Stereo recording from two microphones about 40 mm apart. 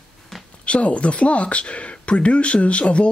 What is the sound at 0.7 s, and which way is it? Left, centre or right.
Speech, left.